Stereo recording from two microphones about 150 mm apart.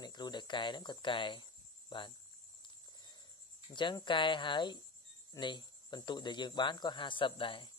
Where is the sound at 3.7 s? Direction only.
30° left (ahead or behind).